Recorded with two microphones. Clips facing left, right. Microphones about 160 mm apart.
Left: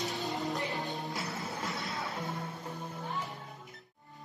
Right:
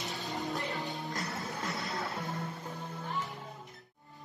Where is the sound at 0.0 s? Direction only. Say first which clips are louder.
Left 3 dB; centre (ahead or behind).